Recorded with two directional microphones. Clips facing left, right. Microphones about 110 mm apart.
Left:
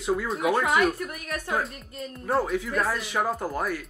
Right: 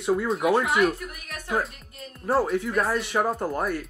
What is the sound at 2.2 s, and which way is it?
Speech, centre (ahead or behind).